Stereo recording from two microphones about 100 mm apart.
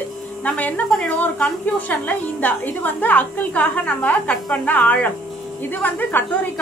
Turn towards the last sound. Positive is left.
turn(degrees=20)  # may be behind; listen again after turning